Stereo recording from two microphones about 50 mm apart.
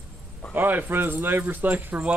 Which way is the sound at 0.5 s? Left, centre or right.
Right.